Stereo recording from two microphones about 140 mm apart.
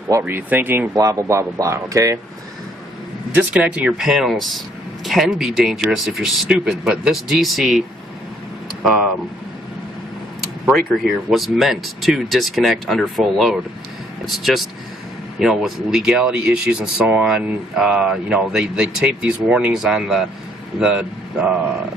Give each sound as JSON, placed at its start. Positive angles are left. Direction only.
{"t": 0.2, "sound": "speech", "side_deg": -10}
{"t": 3.3, "sound": "speech", "side_deg": -10}
{"t": 10.6, "sound": "speech", "side_deg": 0}